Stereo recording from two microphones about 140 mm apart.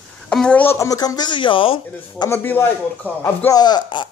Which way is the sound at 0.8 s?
25° left (ahead or behind).